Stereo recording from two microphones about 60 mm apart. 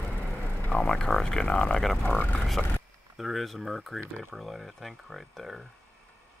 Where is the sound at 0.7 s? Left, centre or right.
Centre.